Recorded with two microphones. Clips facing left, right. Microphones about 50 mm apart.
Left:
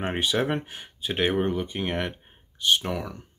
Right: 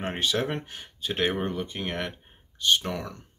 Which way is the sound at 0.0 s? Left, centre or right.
Centre.